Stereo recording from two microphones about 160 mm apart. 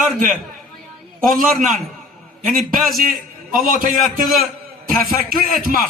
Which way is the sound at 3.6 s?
60° right (ahead or behind).